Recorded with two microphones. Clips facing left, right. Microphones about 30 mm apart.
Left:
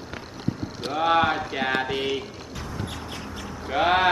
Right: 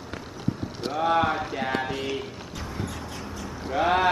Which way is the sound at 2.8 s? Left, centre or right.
Left.